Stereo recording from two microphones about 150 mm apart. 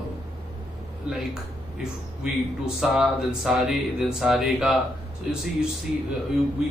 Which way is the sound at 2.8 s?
5° right (ahead or behind).